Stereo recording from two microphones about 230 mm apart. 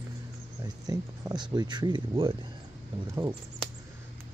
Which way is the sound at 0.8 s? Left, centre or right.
Centre.